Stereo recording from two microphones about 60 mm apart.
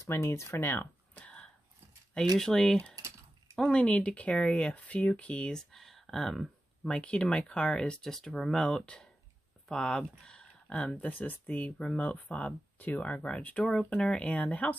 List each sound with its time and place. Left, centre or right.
0.0 s speech: left
0.6 s speech: left
1.1 s a sound: centre
2.3 s speech: centre
6.8 s speech: centre
13.7 s speech: centre